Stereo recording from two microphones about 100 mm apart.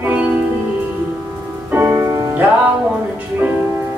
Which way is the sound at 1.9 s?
40° right (ahead or behind).